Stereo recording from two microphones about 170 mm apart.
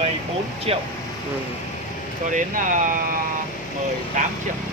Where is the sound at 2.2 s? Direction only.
50° right (ahead or behind).